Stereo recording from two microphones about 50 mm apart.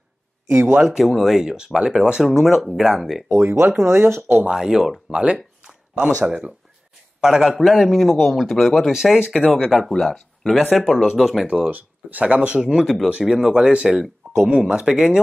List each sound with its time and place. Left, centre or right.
0.5 s speech: right
0.8 s speech: centre
3.3 s speech: right
4.5 s speech: centre
5.1 s a man's voice: right; by 11.4 s centre
11.7 s speech: right
12.6 s speech: centre
13.5 s speech: right